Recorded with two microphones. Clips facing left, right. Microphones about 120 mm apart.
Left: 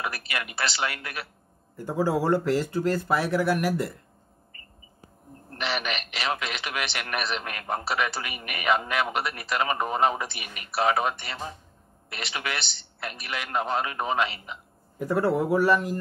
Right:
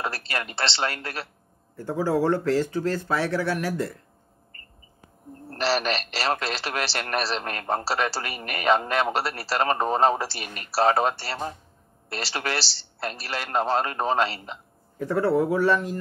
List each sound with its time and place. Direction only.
0.0 s speech: 30° right (ahead or behind)
1.8 s speech: 10° left (ahead or behind)
5.5 s a man's voice: 35° right (ahead or behind)
15.0 s speech: 10° left (ahead or behind)